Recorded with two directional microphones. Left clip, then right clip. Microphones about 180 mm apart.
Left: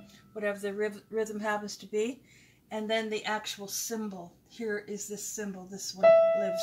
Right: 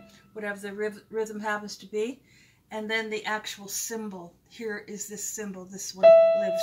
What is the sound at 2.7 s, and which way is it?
Speech, 30° right (ahead or behind).